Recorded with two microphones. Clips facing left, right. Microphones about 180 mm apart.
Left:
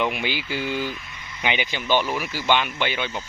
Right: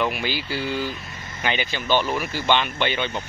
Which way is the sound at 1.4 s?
15° left (ahead or behind).